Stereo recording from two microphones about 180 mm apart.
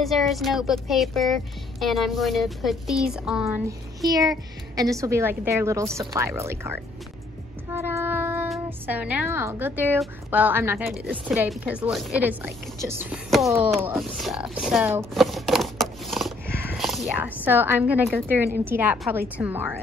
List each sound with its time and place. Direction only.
0.0 s a woman's voice: centre (ahead or behind)
3.4 s a woman's voice: 15° right (ahead or behind)
7.7 s child singing: 15° right (ahead or behind)
8.6 s a woman's voice: 10° right (ahead or behind)